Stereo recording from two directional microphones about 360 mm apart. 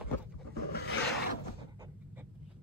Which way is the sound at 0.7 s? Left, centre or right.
Left.